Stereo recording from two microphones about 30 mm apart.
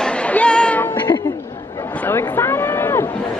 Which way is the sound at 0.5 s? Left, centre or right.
Left.